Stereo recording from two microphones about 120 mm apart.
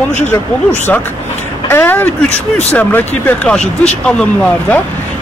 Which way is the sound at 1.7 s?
20° left (ahead or behind).